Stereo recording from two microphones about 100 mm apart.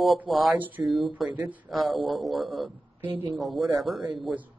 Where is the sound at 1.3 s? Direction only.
15° right (ahead or behind).